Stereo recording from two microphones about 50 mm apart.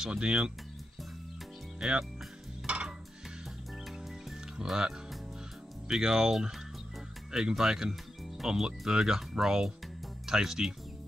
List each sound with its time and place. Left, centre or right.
0.0 s speech: centre
1.8 s speech: centre
2.6 s music: right
4.6 s speech: centre
5.9 s speech: centre